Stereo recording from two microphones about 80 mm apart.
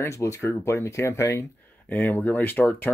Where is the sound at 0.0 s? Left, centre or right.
Left.